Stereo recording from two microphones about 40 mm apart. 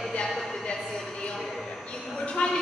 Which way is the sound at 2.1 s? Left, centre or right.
Left.